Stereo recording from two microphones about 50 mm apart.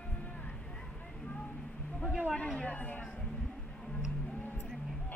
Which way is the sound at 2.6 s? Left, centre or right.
Left.